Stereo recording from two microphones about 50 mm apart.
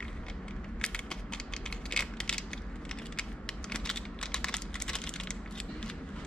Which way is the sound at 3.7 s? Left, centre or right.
Centre.